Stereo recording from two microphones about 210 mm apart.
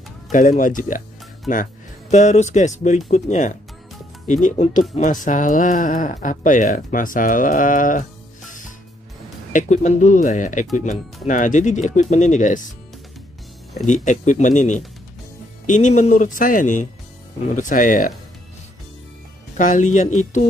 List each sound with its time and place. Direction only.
0.3 s speech: 40° left (ahead or behind)
9.5 s speech: 35° left (ahead or behind)
13.8 s speech: 35° left (ahead or behind)
19.5 s speech: 35° left (ahead or behind)